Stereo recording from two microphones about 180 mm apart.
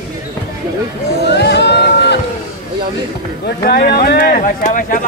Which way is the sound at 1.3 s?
65° left (ahead or behind).